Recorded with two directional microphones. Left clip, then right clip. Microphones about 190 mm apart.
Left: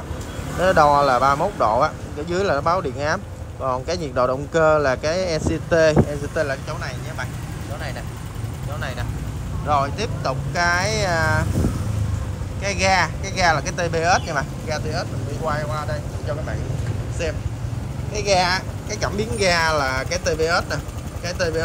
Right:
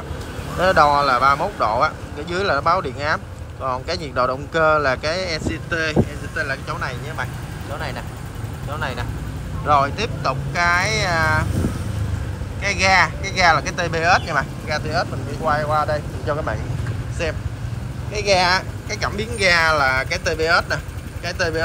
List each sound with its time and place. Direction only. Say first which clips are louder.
0.6 s speech: even; 15° left (ahead or behind)
6.3 s speech: right 1 dB; 15° left (ahead or behind)
8.7 s speech: right 4 dB; 5° left (ahead or behind)
12.6 s speech: right 3 dB; 10° left (ahead or behind)
18.1 s speech: right 2 dB; 10° left (ahead or behind)